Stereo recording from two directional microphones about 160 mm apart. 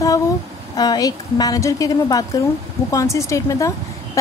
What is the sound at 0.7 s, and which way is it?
A woman's voice, 25° left (ahead or behind).